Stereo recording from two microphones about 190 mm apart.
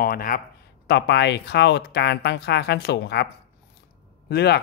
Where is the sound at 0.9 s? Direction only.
65° left (ahead or behind).